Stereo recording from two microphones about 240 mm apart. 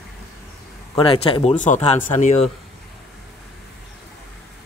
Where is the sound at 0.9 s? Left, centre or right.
Left.